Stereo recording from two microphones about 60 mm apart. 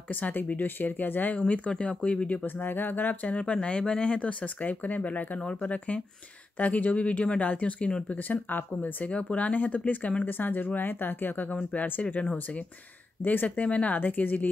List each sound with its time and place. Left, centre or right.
0.1 s speech: left
1.7 s speech: centre